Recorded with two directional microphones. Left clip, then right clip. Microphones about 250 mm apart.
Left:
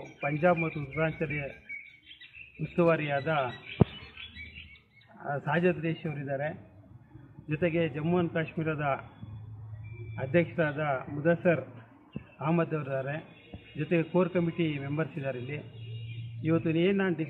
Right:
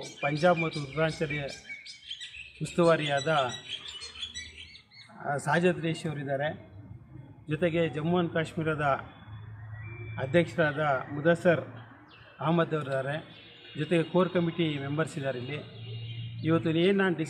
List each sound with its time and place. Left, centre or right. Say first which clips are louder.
0.2 s a man's voice: right 1 dB; centre
2.7 s a man's voice: right 2 dB; centre
5.2 s a man's voice: right 2 dB; centre
10.1 s a man's voice: right 2 dB; centre